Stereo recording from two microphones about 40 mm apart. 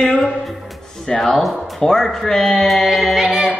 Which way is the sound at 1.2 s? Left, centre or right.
Centre.